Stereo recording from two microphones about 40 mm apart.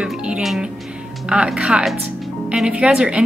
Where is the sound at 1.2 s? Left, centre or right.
Right.